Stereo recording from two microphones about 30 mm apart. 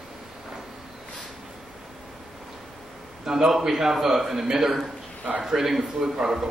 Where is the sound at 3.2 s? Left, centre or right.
Centre.